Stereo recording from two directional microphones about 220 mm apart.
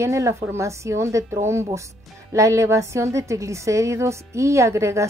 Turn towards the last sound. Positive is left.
turn(degrees=-15)  # may be behind; listen again after turning